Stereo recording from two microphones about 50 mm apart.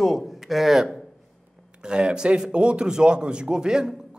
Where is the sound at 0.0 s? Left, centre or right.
Centre.